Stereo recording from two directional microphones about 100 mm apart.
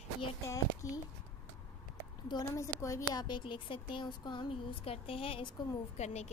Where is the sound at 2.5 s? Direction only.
30° left (ahead or behind); by 4.5 s 50° left (ahead or behind).